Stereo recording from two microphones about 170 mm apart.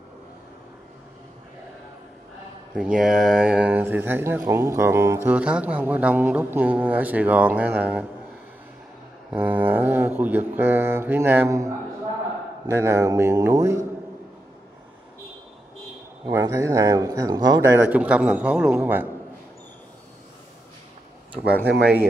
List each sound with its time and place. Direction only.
2.7 s speech: 5° right (ahead or behind)
9.3 s speech: 10° right (ahead or behind)
12.7 s speech: 15° right (ahead or behind)
16.3 s speech: 15° right (ahead or behind)